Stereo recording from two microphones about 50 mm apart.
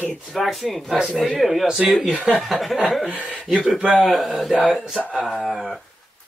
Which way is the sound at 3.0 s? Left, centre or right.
Right.